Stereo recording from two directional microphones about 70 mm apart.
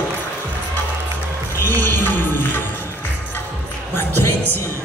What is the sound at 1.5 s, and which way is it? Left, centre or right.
Music, left.